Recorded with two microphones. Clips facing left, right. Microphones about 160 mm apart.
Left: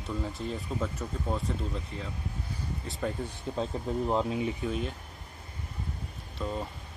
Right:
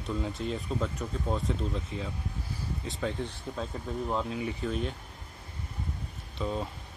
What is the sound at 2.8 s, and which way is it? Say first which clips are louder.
Speech: even; 5° left (ahead or behind).